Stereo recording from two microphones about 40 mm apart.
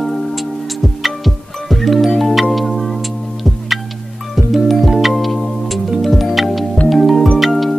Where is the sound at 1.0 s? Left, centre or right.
Centre.